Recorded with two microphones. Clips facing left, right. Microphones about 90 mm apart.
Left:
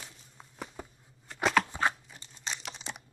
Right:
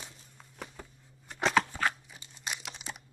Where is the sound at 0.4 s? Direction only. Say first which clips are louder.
Left 3 dB; 15° left (ahead or behind).